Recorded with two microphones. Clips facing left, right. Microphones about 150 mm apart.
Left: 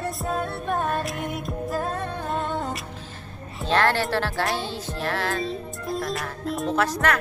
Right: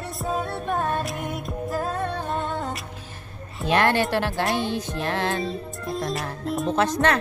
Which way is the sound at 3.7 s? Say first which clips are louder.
Right 1 dB; 15° right (ahead or behind).